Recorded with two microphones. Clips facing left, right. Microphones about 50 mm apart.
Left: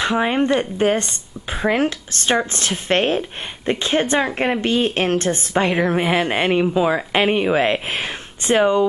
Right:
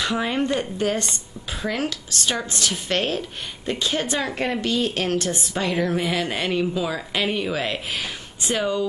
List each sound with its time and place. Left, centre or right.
0.0 s a woman's voice: left